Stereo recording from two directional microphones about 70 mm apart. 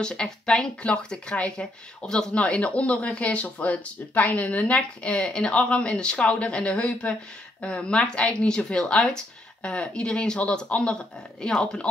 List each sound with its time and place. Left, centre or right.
0.0 s speech: centre